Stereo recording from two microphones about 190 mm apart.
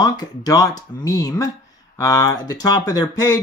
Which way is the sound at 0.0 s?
20° left (ahead or behind).